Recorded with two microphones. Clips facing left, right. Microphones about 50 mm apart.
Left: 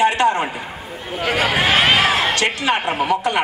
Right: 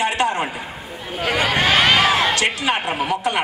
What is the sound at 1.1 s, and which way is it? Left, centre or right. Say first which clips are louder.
Speech: left 1 dB; centre.